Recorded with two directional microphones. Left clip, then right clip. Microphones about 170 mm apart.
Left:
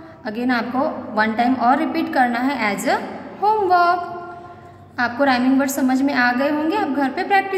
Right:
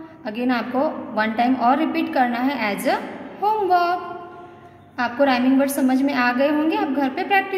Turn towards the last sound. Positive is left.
turn(degrees=-25)  # may be behind; listen again after turning